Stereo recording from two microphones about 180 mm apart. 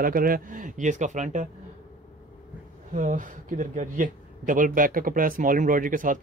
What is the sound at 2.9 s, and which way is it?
Speech, 45° right (ahead or behind).